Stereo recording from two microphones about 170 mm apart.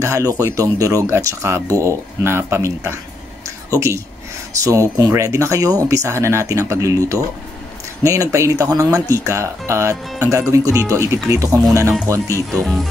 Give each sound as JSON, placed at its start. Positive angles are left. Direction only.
{"t": 0.0, "sound": "speech", "side_deg": -20}
{"t": 12.5, "sound": "speech", "side_deg": 0}